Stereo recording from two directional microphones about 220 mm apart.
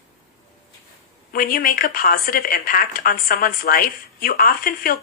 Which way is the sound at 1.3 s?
40° left (ahead or behind).